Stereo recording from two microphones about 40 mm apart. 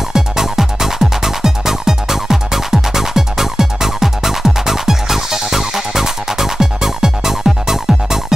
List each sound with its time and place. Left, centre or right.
0.1 s music: centre